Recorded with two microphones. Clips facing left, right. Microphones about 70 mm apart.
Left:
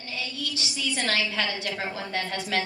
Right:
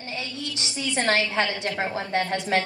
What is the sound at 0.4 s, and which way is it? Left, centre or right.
A woman's voice, right.